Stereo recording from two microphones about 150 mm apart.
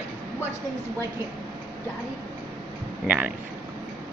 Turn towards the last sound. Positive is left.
turn(degrees=-10)  # may be behind; listen again after turning